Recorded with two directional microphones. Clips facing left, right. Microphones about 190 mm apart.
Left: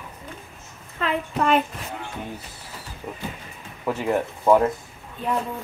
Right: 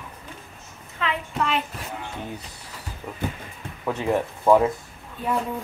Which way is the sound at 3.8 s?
Centre (ahead or behind).